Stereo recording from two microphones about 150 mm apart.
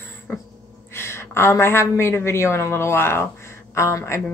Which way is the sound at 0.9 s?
15° left (ahead or behind).